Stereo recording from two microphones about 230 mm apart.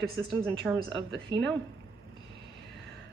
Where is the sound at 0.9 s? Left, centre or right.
Right.